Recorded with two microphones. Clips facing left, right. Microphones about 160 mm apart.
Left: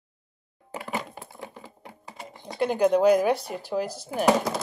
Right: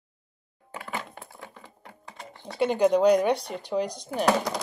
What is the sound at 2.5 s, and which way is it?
Speech, centre (ahead or behind).